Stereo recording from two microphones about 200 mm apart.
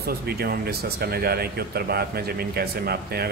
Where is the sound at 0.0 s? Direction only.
50° right (ahead or behind).